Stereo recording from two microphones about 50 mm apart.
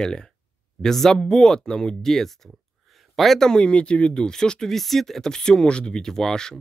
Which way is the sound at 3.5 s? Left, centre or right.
Left.